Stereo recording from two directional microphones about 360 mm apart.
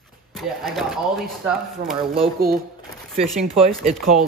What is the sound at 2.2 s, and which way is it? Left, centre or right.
Speech, right.